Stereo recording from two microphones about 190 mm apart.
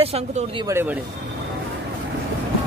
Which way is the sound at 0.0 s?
35° right (ahead or behind).